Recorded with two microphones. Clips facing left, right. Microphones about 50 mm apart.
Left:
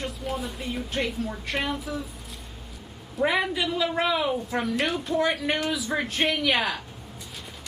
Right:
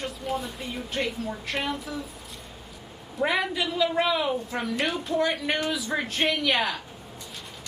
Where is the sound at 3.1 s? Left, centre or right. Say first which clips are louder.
Left 1 dB; centre.